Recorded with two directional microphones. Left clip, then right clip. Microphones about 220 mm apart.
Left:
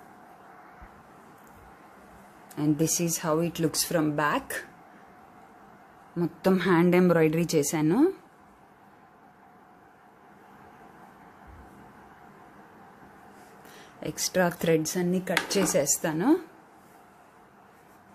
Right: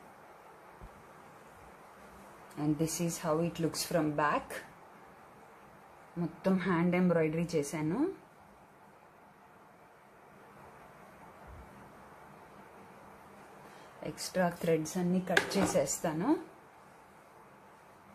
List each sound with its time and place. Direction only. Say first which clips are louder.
2.5 s speech: left 7 dB; 40° left (ahead or behind)
6.4 s a woman's voice: left 9 dB; 45° left (ahead or behind)
14.0 s speech: left 7 dB; 40° left (ahead or behind)